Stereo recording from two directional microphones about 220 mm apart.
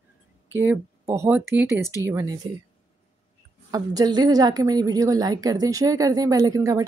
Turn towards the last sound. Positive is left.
turn(degrees=-15)  # may be behind; listen again after turning